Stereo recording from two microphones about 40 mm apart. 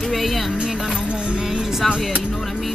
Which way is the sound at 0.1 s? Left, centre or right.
Centre.